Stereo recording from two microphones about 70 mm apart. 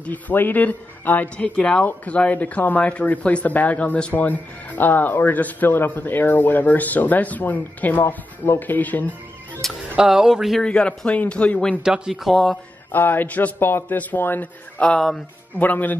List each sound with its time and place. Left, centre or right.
0.0 s speech: left
9.6 s speech: centre
9.9 s speech: centre
10.6 s speech: centre
11.8 s speech: centre
12.9 s speech: left
14.8 s speech: centre
15.6 s speech: left